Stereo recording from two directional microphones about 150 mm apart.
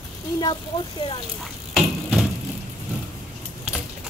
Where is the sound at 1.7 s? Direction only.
Centre (ahead or behind).